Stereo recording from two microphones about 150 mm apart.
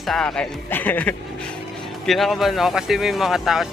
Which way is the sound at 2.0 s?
Centre (ahead or behind).